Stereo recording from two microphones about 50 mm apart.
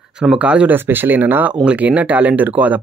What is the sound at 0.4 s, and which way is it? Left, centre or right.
Speech, right.